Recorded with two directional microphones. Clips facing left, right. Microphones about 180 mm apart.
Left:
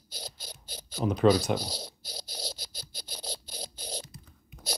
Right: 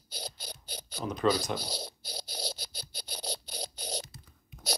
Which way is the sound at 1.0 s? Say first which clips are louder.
Left 7 dB; 5° left (ahead or behind).